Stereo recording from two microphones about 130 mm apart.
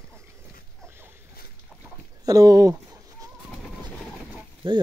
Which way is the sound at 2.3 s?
25° right (ahead or behind).